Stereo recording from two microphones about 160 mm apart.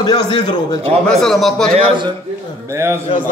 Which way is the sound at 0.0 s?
30° left (ahead or behind).